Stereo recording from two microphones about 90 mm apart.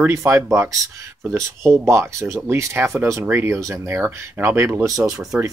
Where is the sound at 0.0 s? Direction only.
30° right (ahead or behind).